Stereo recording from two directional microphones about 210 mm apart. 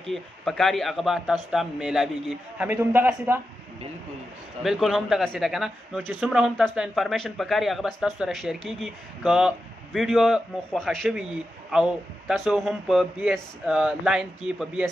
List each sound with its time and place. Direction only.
0.1 s a man's voice: centre (ahead or behind)
4.6 s a man's voice: centre (ahead or behind)